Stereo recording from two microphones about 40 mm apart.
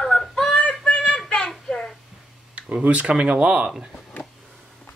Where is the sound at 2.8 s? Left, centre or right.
Right.